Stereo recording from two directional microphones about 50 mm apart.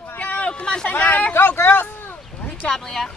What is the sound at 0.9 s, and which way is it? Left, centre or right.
Speech, left.